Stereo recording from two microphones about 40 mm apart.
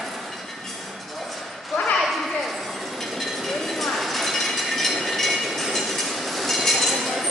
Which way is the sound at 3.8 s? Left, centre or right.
Centre.